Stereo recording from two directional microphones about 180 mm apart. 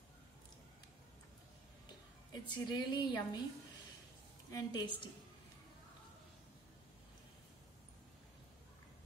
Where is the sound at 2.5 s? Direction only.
25° left (ahead or behind).